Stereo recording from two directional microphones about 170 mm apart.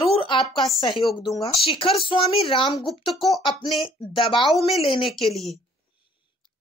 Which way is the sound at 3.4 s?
25° left (ahead or behind).